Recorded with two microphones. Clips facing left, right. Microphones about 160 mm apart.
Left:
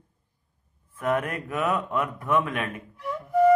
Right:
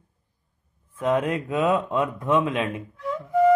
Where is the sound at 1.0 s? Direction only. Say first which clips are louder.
Right 4 dB; 20° right (ahead or behind).